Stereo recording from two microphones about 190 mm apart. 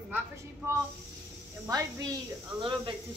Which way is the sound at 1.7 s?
20° right (ahead or behind).